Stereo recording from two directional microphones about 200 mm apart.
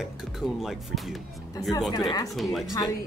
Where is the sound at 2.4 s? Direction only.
Centre (ahead or behind).